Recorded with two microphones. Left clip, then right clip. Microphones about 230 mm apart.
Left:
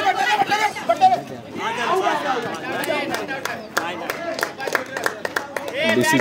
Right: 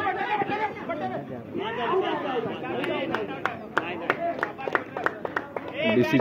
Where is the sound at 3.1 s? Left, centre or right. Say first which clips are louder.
Left 4 dB; left.